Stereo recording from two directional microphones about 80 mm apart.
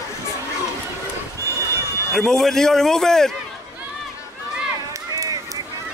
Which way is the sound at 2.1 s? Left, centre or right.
Centre.